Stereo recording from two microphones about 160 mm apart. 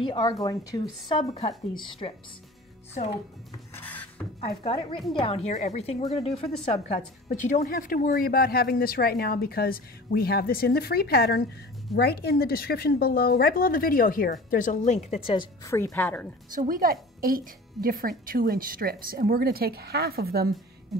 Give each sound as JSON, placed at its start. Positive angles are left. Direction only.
{"t": 0.0, "sound": "a woman's voice", "side_deg": 30}
{"t": 3.7, "sound": "a sound", "side_deg": 10}
{"t": 4.4, "sound": "a woman's voice", "side_deg": 35}
{"t": 7.2, "sound": "speech", "side_deg": 55}
{"t": 11.9, "sound": "speech", "side_deg": 90}
{"t": 15.2, "sound": "speech", "side_deg": 30}
{"t": 15.7, "sound": "speech", "side_deg": 15}
{"t": 16.4, "sound": "speech", "side_deg": -60}